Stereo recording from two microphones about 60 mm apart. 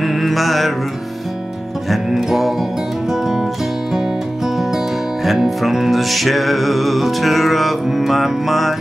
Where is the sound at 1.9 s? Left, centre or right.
Centre.